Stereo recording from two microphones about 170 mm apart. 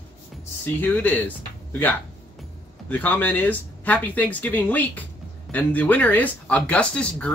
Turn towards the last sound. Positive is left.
turn(degrees=5)  # may be behind; listen again after turning